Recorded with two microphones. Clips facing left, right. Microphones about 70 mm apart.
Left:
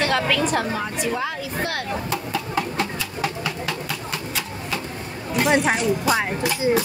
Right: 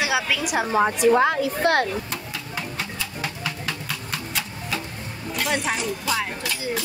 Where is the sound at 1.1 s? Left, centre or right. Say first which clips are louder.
Right 8 dB; right.